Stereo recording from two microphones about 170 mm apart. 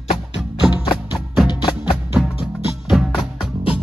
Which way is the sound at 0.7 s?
25° left (ahead or behind).